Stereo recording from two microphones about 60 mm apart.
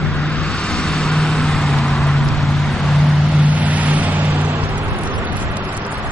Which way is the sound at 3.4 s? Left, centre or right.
Right.